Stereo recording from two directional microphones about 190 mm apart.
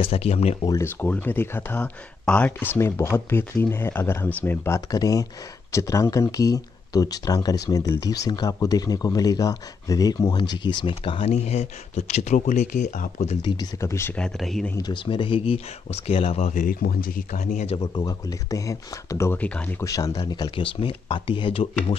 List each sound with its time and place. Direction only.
0.0 s speech: 30° left (ahead or behind)
0.7 s speech: 15° left (ahead or behind); by 13.4 s 40° left (ahead or behind)
13.4 s speech: 25° left (ahead or behind); by 14.8 s 5° left (ahead or behind)
14.8 s speech: 25° left (ahead or behind)
17.7 s speech: 20° left (ahead or behind)
19.9 s speech: 20° left (ahead or behind)